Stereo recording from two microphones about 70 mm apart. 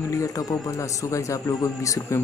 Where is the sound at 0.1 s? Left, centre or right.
Left.